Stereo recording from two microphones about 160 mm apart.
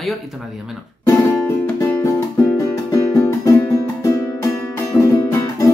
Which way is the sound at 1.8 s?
15° left (ahead or behind).